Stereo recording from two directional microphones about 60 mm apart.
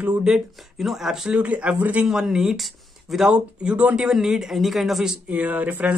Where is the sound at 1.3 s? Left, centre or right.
Right.